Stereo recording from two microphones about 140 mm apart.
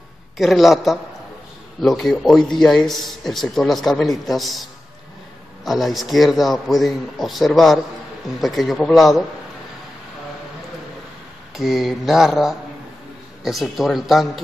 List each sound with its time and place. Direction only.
0.4 s a man's voice: centre (ahead or behind)
5.7 s a man's voice: centre (ahead or behind)
11.5 s a man's voice: centre (ahead or behind)